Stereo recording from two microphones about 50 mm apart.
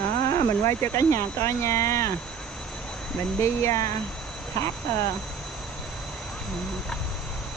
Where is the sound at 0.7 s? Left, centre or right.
Left.